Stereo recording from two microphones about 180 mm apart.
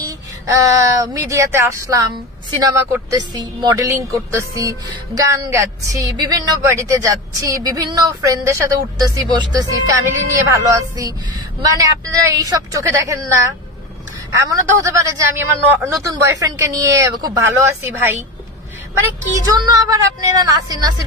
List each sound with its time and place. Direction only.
0.0 s a woman's voice: 20° right (ahead or behind)
14.5 s a woman's voice: 20° right (ahead or behind)
19.4 s a woman's voice: 20° right (ahead or behind)